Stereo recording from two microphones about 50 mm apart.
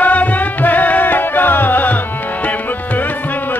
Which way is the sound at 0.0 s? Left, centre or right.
Left.